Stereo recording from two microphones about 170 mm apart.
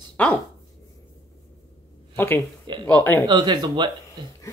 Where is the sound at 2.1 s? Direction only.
15° left (ahead or behind).